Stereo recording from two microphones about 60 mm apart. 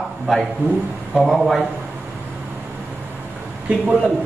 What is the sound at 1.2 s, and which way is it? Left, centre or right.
Speech, centre.